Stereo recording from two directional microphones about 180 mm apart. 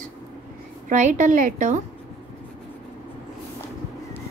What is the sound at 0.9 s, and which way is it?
Speech, 45° right (ahead or behind).